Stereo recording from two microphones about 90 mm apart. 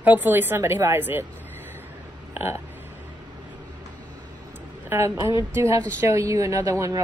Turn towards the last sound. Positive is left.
turn(degrees=-35)  # may be behind; listen again after turning